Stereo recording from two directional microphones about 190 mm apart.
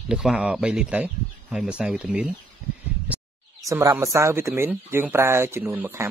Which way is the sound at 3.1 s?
5° right (ahead or behind).